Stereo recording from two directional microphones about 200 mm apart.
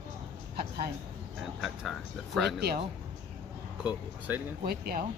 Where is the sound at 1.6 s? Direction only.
Centre (ahead or behind).